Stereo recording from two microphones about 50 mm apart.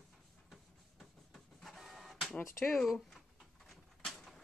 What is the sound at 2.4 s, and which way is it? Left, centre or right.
Speech, left.